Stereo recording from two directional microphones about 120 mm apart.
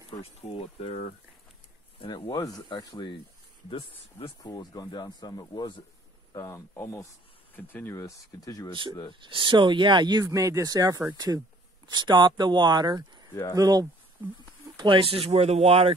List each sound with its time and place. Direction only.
0.2 s speech: 55° left (ahead or behind)
2.0 s speech: 40° left (ahead or behind)
2.3 s speech: 30° left (ahead or behind)
4.4 s speech: 35° left (ahead or behind)
6.3 s speech: 25° left (ahead or behind)
9.2 s speech: 45° right (ahead or behind)
13.3 s speech: 30° left (ahead or behind)
13.6 s speech: 30° right (ahead or behind)
14.8 s speech: 45° right (ahead or behind)